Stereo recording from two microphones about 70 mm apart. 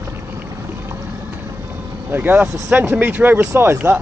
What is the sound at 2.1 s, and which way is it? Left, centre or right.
Speech, right.